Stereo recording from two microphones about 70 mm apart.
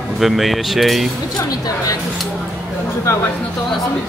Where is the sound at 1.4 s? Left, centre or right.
Left.